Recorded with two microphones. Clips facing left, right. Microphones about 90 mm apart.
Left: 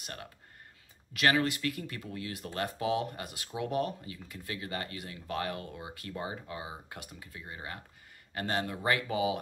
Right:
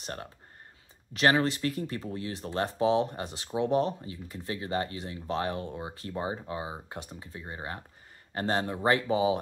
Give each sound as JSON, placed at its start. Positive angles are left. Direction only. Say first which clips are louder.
{"t": 0.0, "sound": "speech", "louder": "right 5 dB", "side_deg": -30}